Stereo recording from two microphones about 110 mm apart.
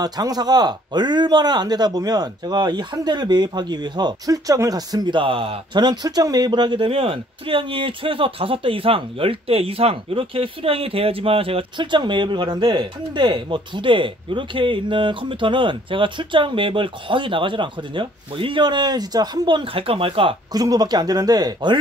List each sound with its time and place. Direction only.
0.0 s speech: 35° right (ahead or behind); by 5.8 s 55° right (ahead or behind)
5.8 s speech: 40° right (ahead or behind); by 20.3 s 55° right (ahead or behind)
20.5 s speech: 35° right (ahead or behind)